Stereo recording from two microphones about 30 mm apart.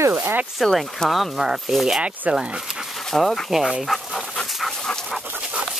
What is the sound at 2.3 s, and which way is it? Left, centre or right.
Speech, right.